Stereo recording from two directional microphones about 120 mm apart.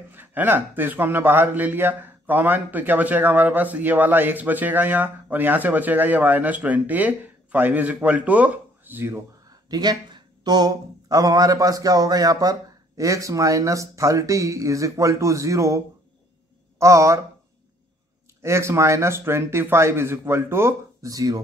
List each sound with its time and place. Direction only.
0.1 s speech: 15° right (ahead or behind)
9.7 s speech: 35° right (ahead or behind)
18.4 s speech: 25° right (ahead or behind)